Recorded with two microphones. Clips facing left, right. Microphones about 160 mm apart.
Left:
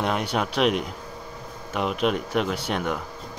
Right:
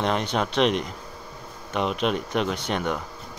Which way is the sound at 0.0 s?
5° left (ahead or behind).